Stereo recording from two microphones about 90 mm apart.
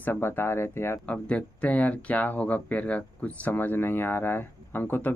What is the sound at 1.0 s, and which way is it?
Speech, 15° left (ahead or behind).